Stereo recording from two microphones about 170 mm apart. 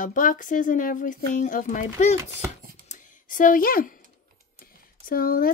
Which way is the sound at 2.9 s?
50° left (ahead or behind).